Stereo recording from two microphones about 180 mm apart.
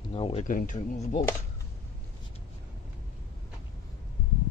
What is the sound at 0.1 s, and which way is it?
Speech, 30° left (ahead or behind).